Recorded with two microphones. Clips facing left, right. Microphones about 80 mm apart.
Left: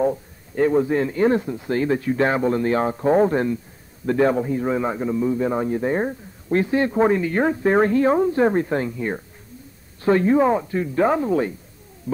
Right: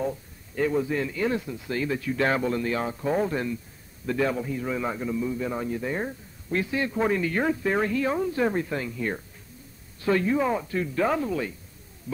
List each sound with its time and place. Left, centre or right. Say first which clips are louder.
0.0 s a man's voice: left 8 dB; left
2.2 s a man's voice: left 4 dB; left
8.9 s speech: left 4 dB; left
10.0 s a man's voice: left 7 dB; left
10.6 s speech: left 6 dB; left